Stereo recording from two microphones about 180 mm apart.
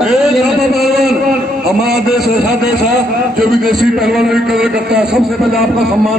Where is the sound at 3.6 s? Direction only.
Centre (ahead or behind).